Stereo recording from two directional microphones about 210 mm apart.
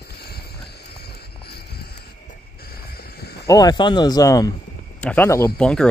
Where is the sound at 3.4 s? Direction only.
15° left (ahead or behind).